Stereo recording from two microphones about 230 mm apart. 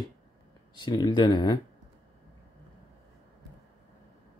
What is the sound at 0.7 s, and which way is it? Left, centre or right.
Speech, centre.